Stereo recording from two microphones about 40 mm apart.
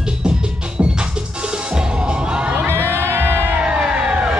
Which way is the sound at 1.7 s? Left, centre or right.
Right.